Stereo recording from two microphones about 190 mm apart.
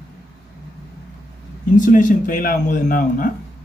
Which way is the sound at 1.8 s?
45° left (ahead or behind).